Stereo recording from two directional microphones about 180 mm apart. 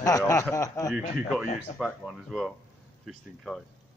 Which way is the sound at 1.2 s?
5° right (ahead or behind).